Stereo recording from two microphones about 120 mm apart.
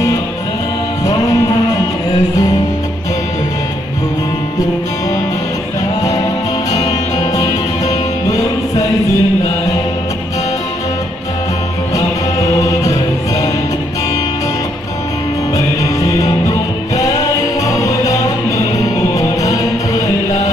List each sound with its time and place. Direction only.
1.0 s music: 30° left (ahead or behind)
6.7 s music: 30° left (ahead or behind)
9.0 s chant: 30° left (ahead or behind)
11.9 s music: 25° left (ahead or behind)
15.5 s music: 30° left (ahead or behind)